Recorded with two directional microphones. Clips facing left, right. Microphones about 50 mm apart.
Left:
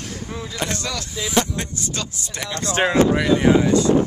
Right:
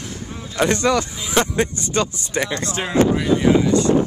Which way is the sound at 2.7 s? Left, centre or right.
Left.